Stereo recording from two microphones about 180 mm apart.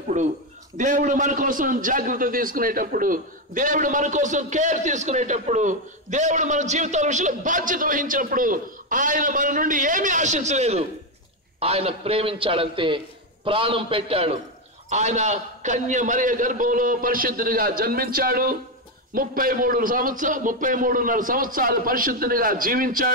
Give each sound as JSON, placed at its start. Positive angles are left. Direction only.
{"t": 0.2, "sound": "a man's voice", "side_deg": -40}